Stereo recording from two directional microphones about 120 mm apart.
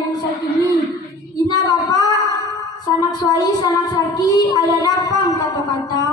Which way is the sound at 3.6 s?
35° left (ahead or behind).